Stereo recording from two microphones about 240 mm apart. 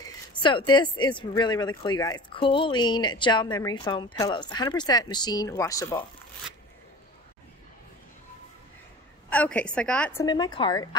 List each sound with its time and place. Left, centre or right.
0.0 s speech: centre
9.3 s a woman's voice: centre
10.2 s speech: centre